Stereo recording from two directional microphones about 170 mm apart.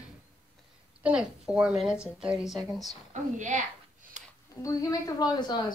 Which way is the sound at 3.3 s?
45° right (ahead or behind).